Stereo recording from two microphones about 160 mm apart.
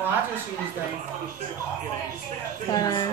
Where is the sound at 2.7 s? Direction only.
25° left (ahead or behind).